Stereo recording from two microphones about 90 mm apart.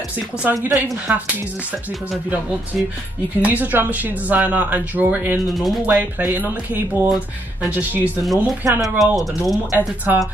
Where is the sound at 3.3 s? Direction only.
15° right (ahead or behind).